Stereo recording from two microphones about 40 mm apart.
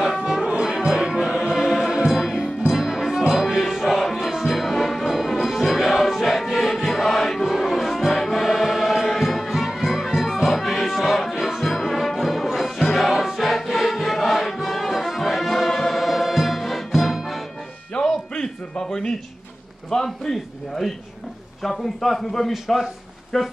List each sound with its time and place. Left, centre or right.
0.6 s music: centre
1.5 s choir: centre
2.0 s music: centre
17.9 s music: centre
18.3 s a sound: centre
19.9 s a man's voice: centre